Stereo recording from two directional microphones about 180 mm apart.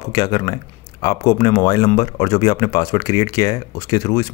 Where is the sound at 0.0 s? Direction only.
20° left (ahead or behind).